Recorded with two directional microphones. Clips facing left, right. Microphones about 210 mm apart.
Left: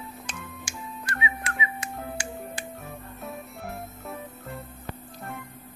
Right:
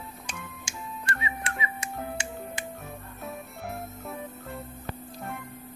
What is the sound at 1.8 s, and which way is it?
Music, 25° right (ahead or behind).